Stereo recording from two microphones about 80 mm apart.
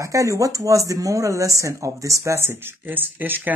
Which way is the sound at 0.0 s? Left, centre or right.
Right.